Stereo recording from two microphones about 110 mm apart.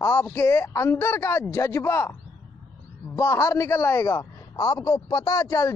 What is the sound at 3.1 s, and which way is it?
A man's voice, 25° left (ahead or behind).